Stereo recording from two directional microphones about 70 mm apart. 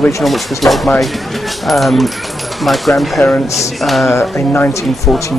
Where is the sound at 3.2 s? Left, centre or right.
Left.